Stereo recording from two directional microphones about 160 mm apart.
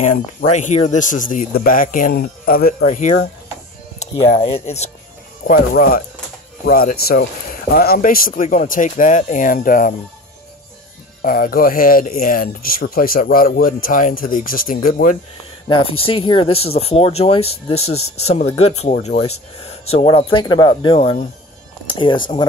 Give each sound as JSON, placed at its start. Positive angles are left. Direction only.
{"t": 0.0, "sound": "speech", "side_deg": 45}
{"t": 2.8, "sound": "speech", "side_deg": 50}
{"t": 5.4, "sound": "speech", "side_deg": 65}
{"t": 11.2, "sound": "speech", "side_deg": 60}
{"t": 15.7, "sound": "speech", "side_deg": 35}